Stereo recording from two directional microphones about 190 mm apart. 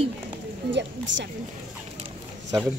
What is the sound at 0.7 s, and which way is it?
Speech, 70° right (ahead or behind).